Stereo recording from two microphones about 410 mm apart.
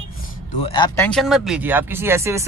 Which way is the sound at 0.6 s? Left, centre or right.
Centre.